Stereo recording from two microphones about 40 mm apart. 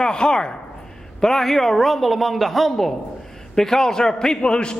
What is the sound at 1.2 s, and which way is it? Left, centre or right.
A man's voice, centre.